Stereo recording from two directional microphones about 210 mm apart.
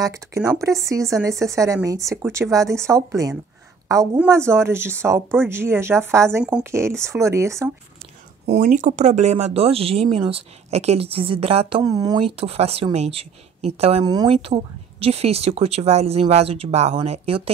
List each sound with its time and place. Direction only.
0.0 s speech: 15° right (ahead or behind)
8.5 s speech: 35° right (ahead or behind)